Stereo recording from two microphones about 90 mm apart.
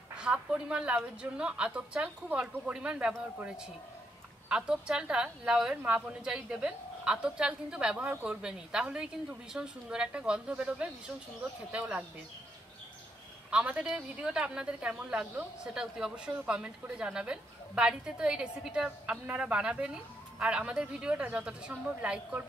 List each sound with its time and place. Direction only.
0.1 s speech: 10° right (ahead or behind)
4.5 s speech: 10° right (ahead or behind)
13.5 s speech: 10° right (ahead or behind)